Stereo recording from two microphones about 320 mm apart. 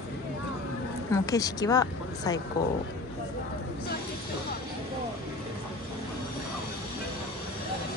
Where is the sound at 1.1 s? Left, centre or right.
Centre.